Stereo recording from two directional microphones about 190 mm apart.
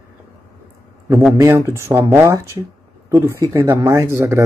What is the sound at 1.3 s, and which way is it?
A man's voice, 15° right (ahead or behind).